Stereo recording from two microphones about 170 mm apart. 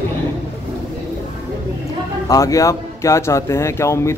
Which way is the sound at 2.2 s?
20° left (ahead or behind).